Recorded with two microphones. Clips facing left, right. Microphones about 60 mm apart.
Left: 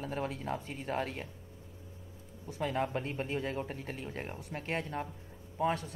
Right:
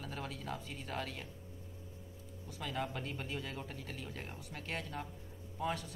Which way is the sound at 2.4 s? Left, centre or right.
Left.